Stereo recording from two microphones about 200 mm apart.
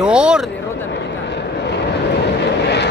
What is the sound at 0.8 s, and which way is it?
Vehicle, 60° left (ahead or behind).